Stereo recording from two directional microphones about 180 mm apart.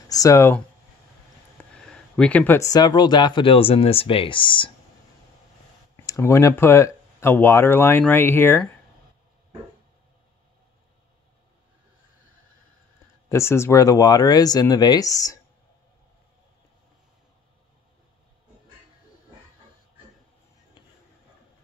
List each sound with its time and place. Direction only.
0.1 s speech: 20° left (ahead or behind)
1.6 s speech: 5° left (ahead or behind); by 4.7 s 30° left (ahead or behind)
6.0 s speech: 15° left (ahead or behind)
13.3 s speech: 15° left (ahead or behind)